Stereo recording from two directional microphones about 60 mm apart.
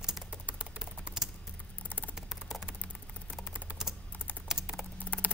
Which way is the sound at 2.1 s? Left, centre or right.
Centre.